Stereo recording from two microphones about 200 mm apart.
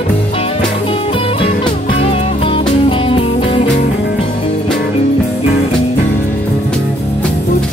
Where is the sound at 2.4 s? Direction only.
25° left (ahead or behind).